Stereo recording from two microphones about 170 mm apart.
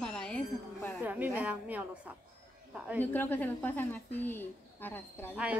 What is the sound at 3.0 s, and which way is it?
A woman's voice, 10° left (ahead or behind).